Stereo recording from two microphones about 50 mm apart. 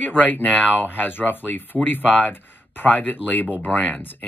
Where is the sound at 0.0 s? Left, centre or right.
Left.